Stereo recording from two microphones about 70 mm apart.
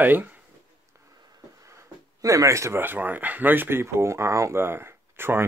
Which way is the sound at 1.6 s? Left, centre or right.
Right.